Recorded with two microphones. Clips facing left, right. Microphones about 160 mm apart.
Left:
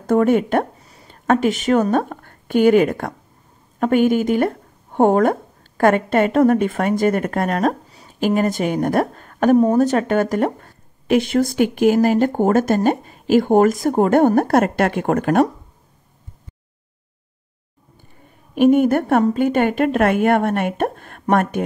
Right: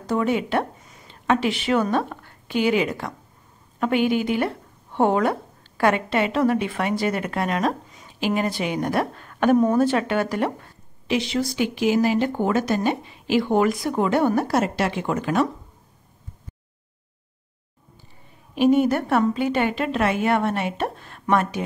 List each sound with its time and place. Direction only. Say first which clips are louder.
0.0 s speech: left 7 dB; 50° left (ahead or behind)
0.7 s a woman's voice: left 1 dB; 35° left (ahead or behind); by 15.4 s 50° left (ahead or behind)
18.5 s speech: left 4 dB; 50° left (ahead or behind)